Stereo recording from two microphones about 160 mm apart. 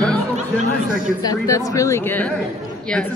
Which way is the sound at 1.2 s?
20° left (ahead or behind).